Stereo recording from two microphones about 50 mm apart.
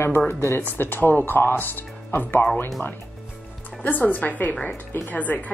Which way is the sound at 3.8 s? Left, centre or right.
Left.